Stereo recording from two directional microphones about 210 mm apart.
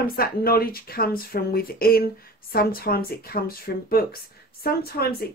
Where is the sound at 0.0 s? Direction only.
45° left (ahead or behind).